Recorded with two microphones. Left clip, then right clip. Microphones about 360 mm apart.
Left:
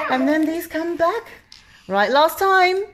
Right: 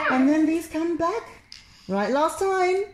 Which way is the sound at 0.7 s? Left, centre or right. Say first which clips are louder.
Left 5 dB; left.